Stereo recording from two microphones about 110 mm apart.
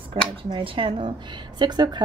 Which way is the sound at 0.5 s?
50° right (ahead or behind).